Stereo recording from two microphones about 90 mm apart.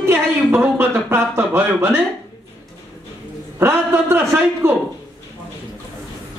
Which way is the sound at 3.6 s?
25° right (ahead or behind).